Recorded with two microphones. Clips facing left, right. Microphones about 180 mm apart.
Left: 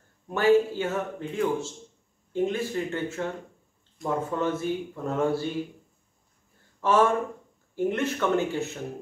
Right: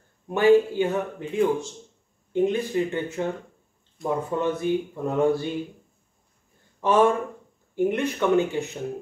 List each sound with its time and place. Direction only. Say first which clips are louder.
0.3 s speech: right 3 dB; 15° right (ahead or behind)
6.8 s speech: right 2 dB; 15° right (ahead or behind)